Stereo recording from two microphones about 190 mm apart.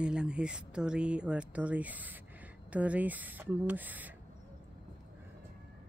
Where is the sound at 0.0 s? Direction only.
5° right (ahead or behind).